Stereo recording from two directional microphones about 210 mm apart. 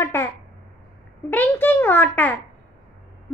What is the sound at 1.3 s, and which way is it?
A child's voice, 10° left (ahead or behind).